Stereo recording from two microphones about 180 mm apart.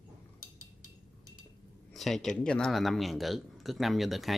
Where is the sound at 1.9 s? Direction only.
Centre (ahead or behind).